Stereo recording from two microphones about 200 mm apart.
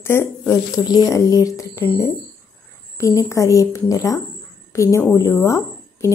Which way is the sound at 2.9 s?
15° left (ahead or behind).